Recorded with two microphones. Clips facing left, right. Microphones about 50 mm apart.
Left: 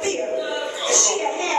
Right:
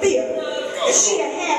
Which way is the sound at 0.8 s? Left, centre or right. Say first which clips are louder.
Right 5 dB; right.